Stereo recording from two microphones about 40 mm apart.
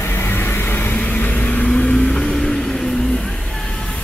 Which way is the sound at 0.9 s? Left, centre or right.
Left.